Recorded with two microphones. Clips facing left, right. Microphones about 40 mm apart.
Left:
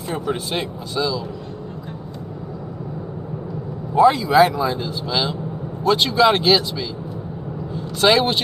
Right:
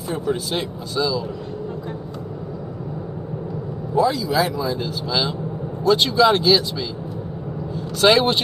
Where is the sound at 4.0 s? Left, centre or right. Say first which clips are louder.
Left 6 dB; left; by 5.3 s centre.